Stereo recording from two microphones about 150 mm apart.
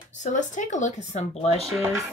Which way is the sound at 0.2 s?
55° left (ahead or behind).